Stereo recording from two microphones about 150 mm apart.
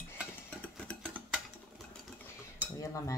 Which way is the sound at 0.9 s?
10° left (ahead or behind).